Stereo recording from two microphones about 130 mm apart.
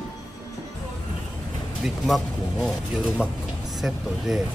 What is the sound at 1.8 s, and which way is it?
Speech, centre (ahead or behind).